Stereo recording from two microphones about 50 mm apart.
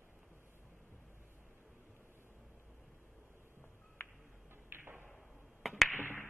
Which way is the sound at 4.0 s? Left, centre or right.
Left.